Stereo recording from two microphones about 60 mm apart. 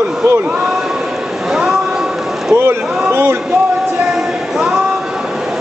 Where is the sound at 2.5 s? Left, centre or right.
Right.